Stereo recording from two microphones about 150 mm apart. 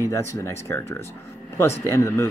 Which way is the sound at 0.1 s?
20° left (ahead or behind).